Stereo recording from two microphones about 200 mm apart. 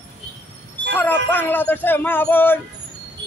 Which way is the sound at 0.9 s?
10° left (ahead or behind).